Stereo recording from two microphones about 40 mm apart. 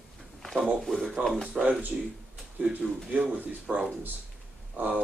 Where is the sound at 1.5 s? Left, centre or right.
Right.